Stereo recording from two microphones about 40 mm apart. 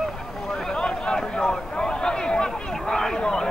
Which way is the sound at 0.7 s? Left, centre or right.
Left.